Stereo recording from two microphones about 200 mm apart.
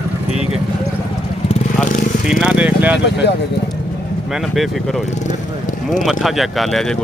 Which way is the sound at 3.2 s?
55° left (ahead or behind).